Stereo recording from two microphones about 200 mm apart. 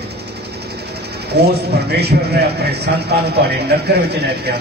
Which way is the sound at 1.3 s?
55° right (ahead or behind).